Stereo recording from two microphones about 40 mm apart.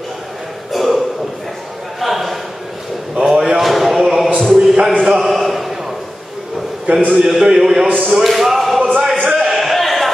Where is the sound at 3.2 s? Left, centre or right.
Centre.